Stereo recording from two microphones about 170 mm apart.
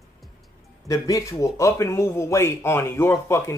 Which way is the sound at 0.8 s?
20° left (ahead or behind).